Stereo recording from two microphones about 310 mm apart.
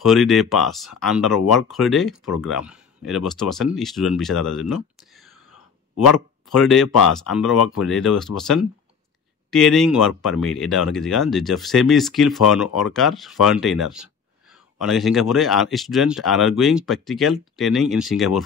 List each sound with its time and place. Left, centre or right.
0.0 s speech: centre
6.5 s speech: centre